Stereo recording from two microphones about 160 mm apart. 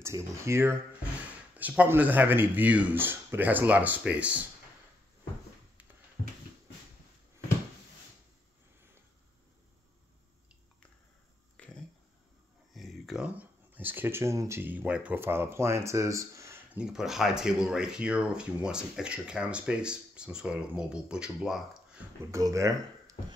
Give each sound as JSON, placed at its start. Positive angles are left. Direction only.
{"t": 0.0, "sound": "speech", "side_deg": -15}
{"t": 11.5, "sound": "a sound", "side_deg": 5}
{"t": 16.7, "sound": "speech", "side_deg": -5}
{"t": 22.3, "sound": "speech", "side_deg": -20}